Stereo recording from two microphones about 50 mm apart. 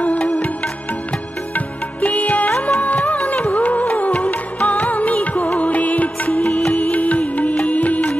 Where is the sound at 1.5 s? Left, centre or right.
Left.